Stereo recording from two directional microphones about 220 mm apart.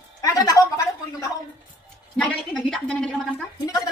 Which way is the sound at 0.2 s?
15° left (ahead or behind).